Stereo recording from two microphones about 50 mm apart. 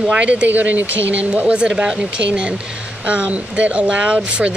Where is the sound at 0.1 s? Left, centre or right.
Right.